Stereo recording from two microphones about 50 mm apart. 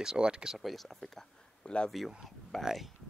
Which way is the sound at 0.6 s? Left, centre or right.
Centre.